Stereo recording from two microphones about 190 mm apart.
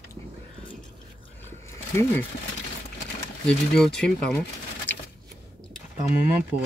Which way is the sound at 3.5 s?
5° left (ahead or behind).